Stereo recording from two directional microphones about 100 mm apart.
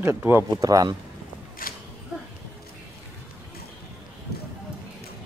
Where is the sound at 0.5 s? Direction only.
35° right (ahead or behind).